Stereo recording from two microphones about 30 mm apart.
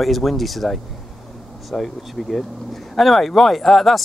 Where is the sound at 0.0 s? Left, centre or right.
Centre.